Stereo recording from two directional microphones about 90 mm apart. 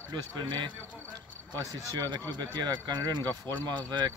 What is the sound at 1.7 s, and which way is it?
Speech, 50° right (ahead or behind).